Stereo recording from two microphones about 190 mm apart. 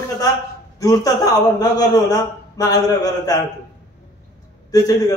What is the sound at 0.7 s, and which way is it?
A man's voice, 20° left (ahead or behind).